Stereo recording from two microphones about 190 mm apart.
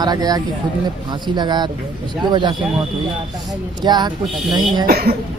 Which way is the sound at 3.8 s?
20° right (ahead or behind).